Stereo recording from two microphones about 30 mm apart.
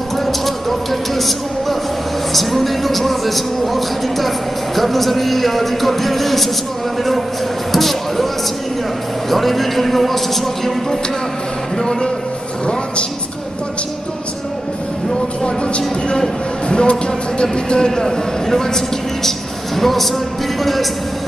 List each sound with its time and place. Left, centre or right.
0.2 s a sound: centre
2.3 s speech: centre
9.3 s speech: centre
11.8 s speech: left
15.4 s speech: left
17.8 s a man's voice: centre